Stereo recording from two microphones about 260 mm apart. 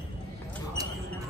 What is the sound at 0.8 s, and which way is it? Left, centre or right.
Mouse, centre.